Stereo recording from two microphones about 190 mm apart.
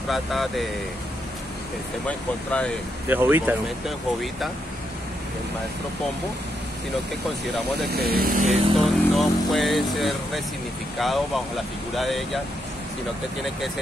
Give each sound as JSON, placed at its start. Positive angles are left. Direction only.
{"t": 0.1, "sound": "speech", "side_deg": 0}
{"t": 2.0, "sound": "speech", "side_deg": 5}
{"t": 3.1, "sound": "speech", "side_deg": -10}
{"t": 7.9, "sound": "speech", "side_deg": -55}
{"t": 8.7, "sound": "speech", "side_deg": 0}